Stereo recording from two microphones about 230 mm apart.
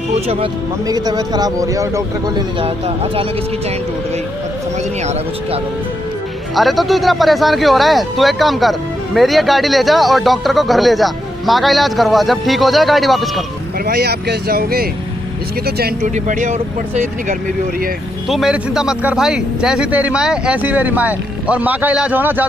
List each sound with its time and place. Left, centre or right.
0.1 s speech: right
2.6 s speech: right
6.5 s speech: centre
13.8 s speech: right
18.3 s speech: centre